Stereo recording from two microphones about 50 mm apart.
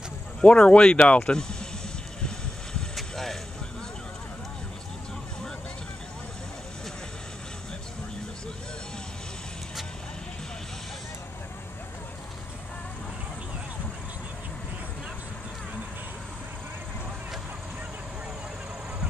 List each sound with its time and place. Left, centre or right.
0.4 s speech: left
3.0 s vehicle: centre